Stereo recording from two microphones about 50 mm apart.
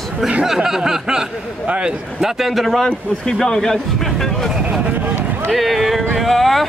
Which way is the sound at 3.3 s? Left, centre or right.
Centre.